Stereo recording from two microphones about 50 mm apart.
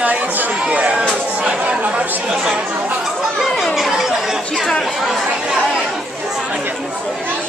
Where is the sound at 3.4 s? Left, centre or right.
Centre.